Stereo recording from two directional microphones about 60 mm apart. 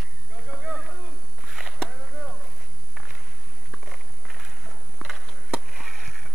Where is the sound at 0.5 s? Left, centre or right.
Centre.